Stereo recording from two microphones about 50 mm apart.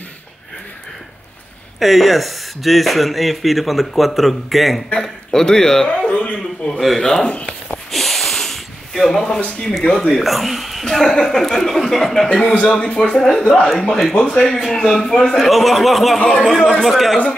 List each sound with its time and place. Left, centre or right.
1.8 s speech: centre
4.9 s a man's voice: centre
6.0 s a sound: left
6.8 s speech: centre
7.9 s snort: centre
9.2 s speech: centre
12.5 s speech: left
13.1 s speech: centre
14.1 s speech: centre
14.4 s speech: centre